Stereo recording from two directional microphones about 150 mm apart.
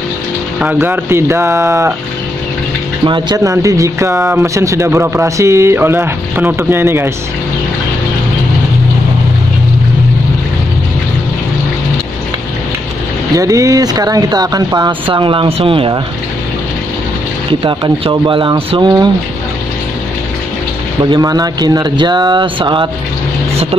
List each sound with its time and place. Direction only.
0.6 s speech: 10° right (ahead or behind)
3.1 s speech: 25° right (ahead or behind)
13.4 s speech: 20° right (ahead or behind); by 16.0 s 35° right (ahead or behind)
17.5 s speech: 35° right (ahead or behind)
21.0 s speech: 25° right (ahead or behind)